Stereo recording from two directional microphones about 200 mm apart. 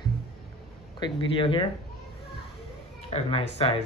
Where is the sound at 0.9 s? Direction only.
25° left (ahead or behind).